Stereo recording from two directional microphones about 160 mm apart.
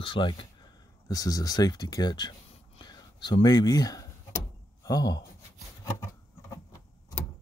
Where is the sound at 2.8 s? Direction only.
25° left (ahead or behind).